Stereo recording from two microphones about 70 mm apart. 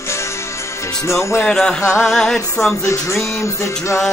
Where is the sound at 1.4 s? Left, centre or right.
Centre.